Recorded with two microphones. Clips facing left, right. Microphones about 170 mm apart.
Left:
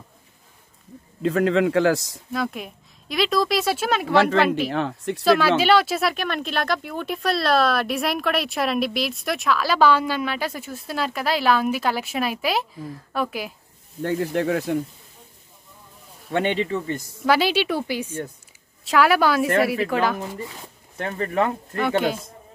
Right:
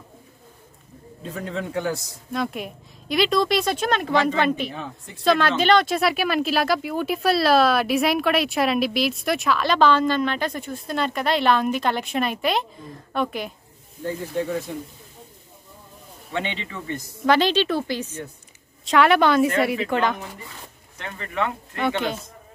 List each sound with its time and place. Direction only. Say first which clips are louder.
1.2 s a man's voice: left 11 dB; 90° left
2.3 s speech: even; centre (ahead or behind)
4.1 s speech: left 4 dB; 70° left (ahead or behind)
4.4 s speech: left 2 dB; 5° left (ahead or behind)
4.6 s speech: left 10 dB; 75° left (ahead or behind)
5.2 s speech: left 1 dB; 5° left (ahead or behind)
14.0 s speech: left 4 dB; 80° left
16.3 s speech: left 7 dB; 50° left (ahead or behind)
17.2 s speech: right 1 dB; 5° left (ahead or behind)
21.0 s speech: left 5 dB; 40° left (ahead or behind)
21.7 s speech: left 2 dB; centre (ahead or behind)